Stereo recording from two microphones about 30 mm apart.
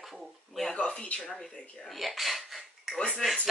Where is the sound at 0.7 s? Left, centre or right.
Left.